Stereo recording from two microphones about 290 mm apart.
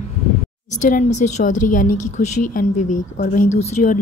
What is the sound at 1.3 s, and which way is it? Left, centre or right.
Speech, left.